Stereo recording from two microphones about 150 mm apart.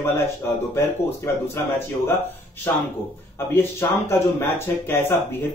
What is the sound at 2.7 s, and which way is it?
Speech, 15° left (ahead or behind).